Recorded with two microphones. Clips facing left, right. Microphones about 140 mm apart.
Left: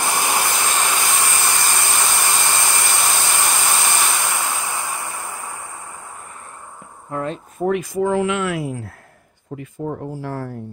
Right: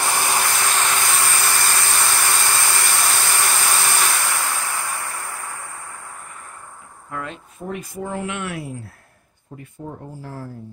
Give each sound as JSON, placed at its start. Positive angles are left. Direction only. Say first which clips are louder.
{"t": 0.0, "sound": "a sound", "louder": "left 1 dB", "side_deg": 15}
{"t": 7.1, "sound": "speech", "louder": "left 6 dB", "side_deg": 30}
{"t": 7.6, "sound": "speech", "louder": "left 10 dB", "side_deg": 90}